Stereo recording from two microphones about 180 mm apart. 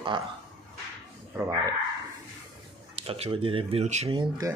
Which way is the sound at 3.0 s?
30° right (ahead or behind).